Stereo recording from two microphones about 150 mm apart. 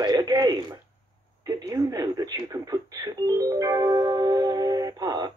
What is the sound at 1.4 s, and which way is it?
Speech, 20° right (ahead or behind).